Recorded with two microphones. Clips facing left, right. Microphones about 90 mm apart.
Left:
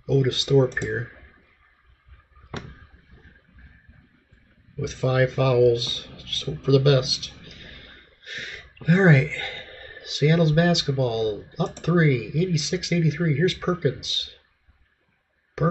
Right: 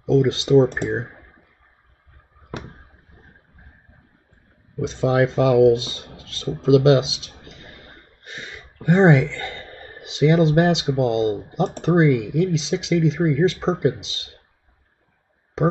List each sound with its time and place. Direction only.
0.0 s speech: 30° right (ahead or behind)
2.6 s a sound: 35° right (ahead or behind)
4.7 s speech: 25° right (ahead or behind)